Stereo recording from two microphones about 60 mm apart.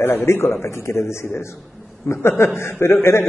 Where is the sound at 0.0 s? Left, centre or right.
Left.